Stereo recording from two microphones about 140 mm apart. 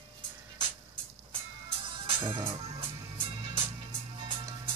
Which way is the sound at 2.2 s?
35° right (ahead or behind).